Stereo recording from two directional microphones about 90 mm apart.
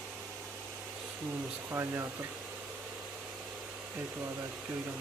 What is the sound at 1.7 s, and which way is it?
Speech, 25° right (ahead or behind).